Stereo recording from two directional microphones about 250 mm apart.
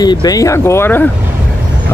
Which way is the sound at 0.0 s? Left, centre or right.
Centre.